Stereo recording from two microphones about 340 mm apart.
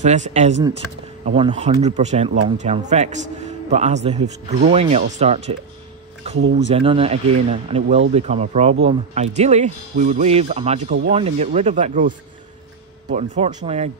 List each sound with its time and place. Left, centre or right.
0.0 s speech: right
6.7 s speech: centre
13.1 s speech: centre